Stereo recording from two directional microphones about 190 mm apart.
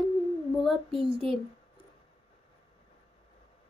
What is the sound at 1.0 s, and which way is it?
Speech, 30° right (ahead or behind).